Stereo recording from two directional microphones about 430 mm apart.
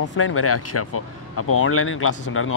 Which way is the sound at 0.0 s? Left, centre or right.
Left.